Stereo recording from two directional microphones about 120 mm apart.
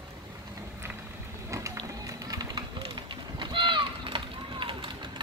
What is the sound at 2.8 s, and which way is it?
Pigeon, 40° right (ahead or behind).